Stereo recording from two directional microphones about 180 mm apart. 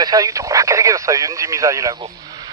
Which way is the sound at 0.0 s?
20° right (ahead or behind).